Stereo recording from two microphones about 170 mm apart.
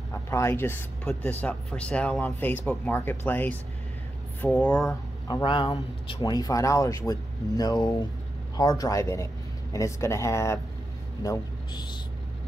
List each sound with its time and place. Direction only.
0.1 s speech: 15° left (ahead or behind)
5.3 s speech: 25° left (ahead or behind)